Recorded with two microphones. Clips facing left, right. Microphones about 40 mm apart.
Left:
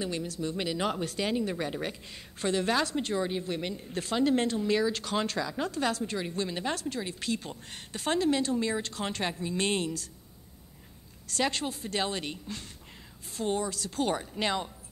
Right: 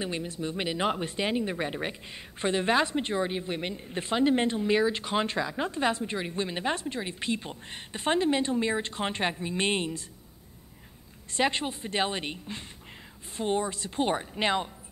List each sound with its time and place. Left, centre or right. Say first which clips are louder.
0.0 s a woman's voice: even; right
11.2 s a woman's voice: right 3 dB; right